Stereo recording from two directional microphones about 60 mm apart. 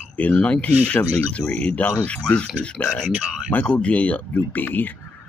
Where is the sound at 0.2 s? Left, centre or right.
Left.